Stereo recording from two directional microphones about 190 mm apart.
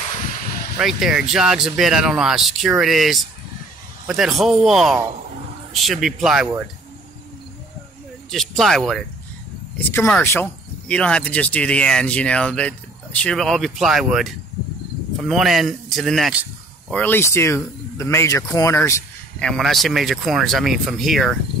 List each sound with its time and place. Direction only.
0.0 s a sound: 40° left (ahead or behind)
0.7 s speech: centre (ahead or behind)
8.3 s speech: centre (ahead or behind)
9.8 s speech: 10° left (ahead or behind)
16.9 s speech: 10° left (ahead or behind)
19.4 s speech: centre (ahead or behind)